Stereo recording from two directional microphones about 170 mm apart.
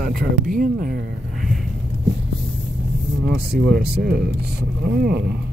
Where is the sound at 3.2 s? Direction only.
70° right (ahead or behind).